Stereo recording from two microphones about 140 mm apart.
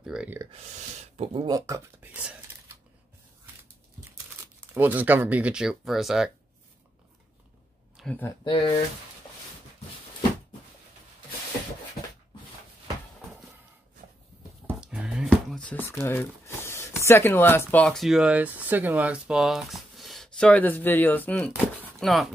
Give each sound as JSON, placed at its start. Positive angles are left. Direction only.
{"t": 0.0, "sound": "a sound", "side_deg": -5}
{"t": 1.0, "sound": "speech", "side_deg": -45}
{"t": 1.7, "sound": "speech", "side_deg": -10}
{"t": 4.6, "sound": "speech", "side_deg": -10}
{"t": 8.0, "sound": "a sound", "side_deg": 0}
{"t": 8.5, "sound": "speech", "side_deg": 40}
{"t": 14.8, "sound": "a sound", "side_deg": -5}
{"t": 15.2, "sound": "speech", "side_deg": 5}
{"t": 22.0, "sound": "speech", "side_deg": 0}